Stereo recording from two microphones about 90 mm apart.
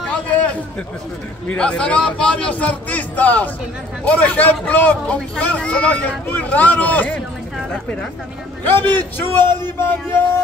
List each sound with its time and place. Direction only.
1.5 s speech: 10° left (ahead or behind)
8.6 s a man's voice: 20° left (ahead or behind)